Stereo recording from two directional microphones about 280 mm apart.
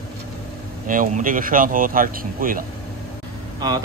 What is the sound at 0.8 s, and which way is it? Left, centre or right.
Speech, right.